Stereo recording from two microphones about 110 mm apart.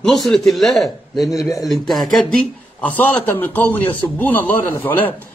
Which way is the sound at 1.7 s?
Centre (ahead or behind).